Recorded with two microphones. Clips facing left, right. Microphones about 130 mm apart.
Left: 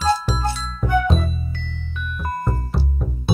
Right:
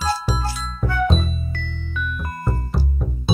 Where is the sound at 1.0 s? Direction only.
Centre (ahead or behind).